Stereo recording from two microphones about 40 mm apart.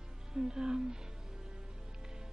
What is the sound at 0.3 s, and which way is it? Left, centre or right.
Speech, centre.